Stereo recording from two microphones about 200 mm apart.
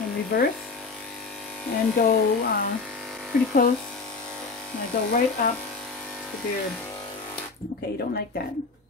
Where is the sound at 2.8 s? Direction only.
Centre (ahead or behind).